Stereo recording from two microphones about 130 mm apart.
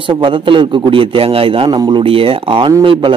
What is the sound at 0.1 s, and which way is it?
A man's voice, 40° right (ahead or behind).